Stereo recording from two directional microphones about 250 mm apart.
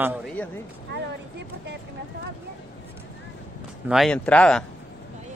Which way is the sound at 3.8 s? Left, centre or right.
Centre.